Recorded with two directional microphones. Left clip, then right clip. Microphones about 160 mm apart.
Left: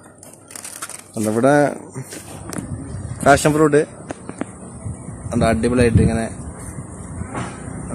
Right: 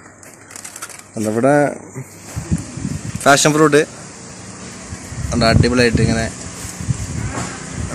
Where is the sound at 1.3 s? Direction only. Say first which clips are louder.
Right 1 dB; 5° left (ahead or behind).